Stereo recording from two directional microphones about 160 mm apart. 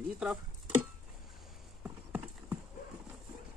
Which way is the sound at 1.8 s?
5° right (ahead or behind).